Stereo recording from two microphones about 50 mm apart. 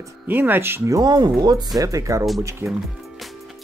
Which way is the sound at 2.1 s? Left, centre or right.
Right.